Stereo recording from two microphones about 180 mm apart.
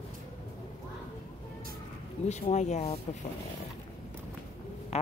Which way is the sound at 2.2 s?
40° left (ahead or behind).